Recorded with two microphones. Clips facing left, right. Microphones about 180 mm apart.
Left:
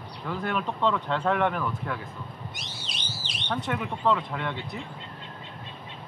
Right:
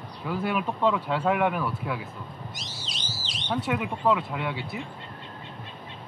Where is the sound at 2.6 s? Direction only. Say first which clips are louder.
Right 1 dB; 60° left (ahead or behind).